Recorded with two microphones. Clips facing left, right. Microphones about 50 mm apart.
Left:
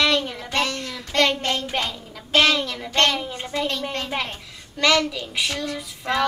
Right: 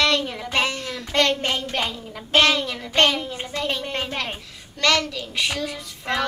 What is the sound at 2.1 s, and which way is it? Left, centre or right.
Speech, centre.